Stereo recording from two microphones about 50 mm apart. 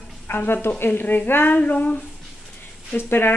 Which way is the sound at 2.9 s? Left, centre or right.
Left.